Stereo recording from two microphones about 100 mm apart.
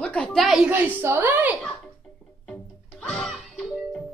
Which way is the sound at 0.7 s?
20° right (ahead or behind).